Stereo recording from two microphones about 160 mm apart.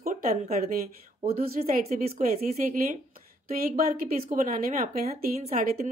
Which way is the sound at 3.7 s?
60° right (ahead or behind).